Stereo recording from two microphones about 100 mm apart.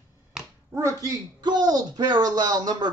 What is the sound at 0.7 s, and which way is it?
Speech, 30° right (ahead or behind).